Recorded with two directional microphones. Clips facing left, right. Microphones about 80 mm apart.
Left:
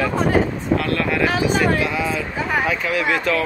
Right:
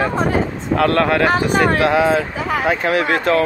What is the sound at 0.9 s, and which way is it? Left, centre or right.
Speech, right.